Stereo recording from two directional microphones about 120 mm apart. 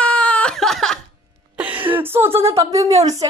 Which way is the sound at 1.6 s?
15° right (ahead or behind).